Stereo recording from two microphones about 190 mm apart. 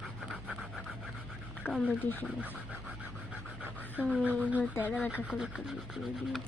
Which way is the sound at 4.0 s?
5° right (ahead or behind).